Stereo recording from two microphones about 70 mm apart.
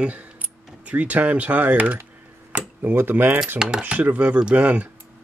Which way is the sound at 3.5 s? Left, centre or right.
Centre.